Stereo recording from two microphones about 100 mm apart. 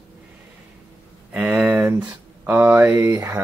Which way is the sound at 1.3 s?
15° right (ahead or behind).